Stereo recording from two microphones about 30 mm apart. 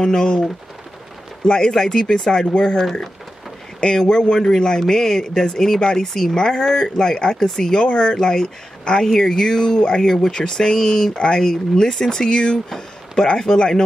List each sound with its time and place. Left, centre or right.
0.0 s speech: left
7.8 s speech: left
10.0 s speech: centre
11.1 s speech: left
12.6 s a sound: centre
13.2 s speech: left